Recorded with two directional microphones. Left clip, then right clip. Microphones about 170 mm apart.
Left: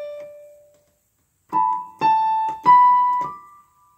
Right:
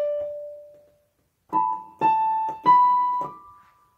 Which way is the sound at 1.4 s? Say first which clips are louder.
Left 4 dB; 30° left (ahead or behind).